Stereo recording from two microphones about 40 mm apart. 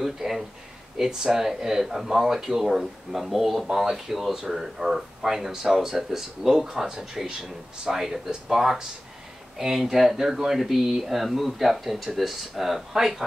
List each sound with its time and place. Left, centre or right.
0.0 s speech: centre
3.6 s speech: centre
3.9 s speech: centre